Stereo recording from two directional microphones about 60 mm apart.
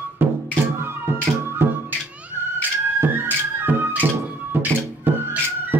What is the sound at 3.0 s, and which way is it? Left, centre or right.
Music, right.